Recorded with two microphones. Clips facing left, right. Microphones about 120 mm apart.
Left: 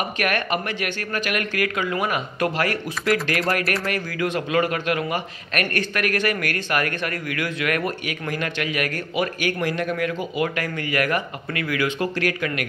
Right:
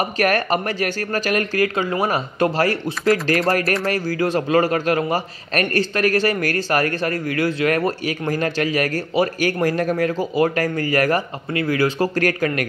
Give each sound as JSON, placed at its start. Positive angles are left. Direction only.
{"t": 0.2, "sound": "a man's voice", "side_deg": -35}